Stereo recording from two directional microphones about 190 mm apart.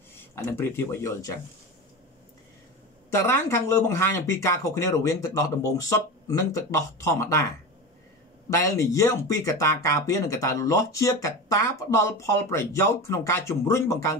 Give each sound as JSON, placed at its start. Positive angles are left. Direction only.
{"t": 0.1, "sound": "speech", "side_deg": 10}
{"t": 3.2, "sound": "speech", "side_deg": 15}
{"t": 8.5, "sound": "speech", "side_deg": 15}